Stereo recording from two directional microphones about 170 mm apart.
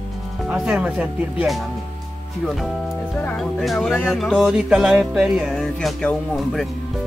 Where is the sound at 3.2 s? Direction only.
Centre (ahead or behind).